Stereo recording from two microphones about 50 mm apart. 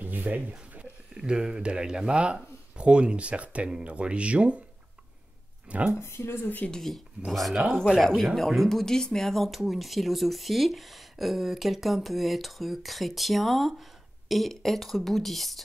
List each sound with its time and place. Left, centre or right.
0.0 s a sound: right
1.1 s speech: centre
5.7 s speech: right
5.9 s speech: left
6.4 s speech: left
6.7 s speech: centre